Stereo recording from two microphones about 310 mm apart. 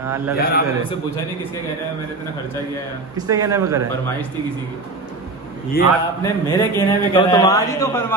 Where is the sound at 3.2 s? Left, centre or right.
Centre.